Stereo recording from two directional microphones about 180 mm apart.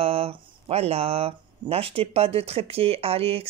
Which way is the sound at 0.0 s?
30° right (ahead or behind).